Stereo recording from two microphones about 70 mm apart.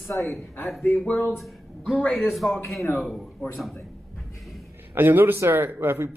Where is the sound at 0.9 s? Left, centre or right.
Centre.